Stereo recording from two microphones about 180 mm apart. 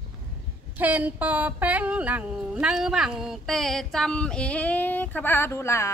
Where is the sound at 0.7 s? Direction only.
10° right (ahead or behind).